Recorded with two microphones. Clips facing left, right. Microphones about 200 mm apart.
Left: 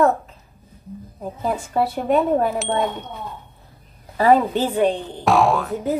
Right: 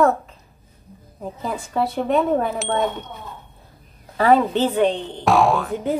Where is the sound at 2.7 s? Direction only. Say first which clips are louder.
Even; 30° left (ahead or behind).